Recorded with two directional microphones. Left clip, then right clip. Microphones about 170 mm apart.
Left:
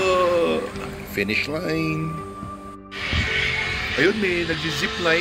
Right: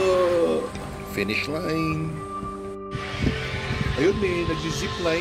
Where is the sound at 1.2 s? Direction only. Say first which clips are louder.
Left 3 dB; centre (ahead or behind).